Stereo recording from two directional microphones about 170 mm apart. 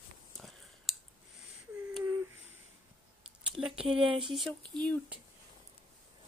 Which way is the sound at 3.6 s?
5° right (ahead or behind).